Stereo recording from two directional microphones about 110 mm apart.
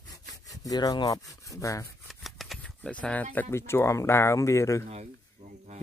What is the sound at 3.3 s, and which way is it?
Speech, 20° left (ahead or behind).